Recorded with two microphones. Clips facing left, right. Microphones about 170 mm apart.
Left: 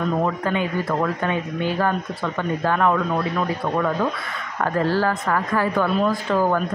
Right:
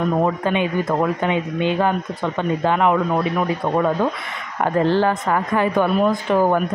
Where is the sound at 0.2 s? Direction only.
20° right (ahead or behind).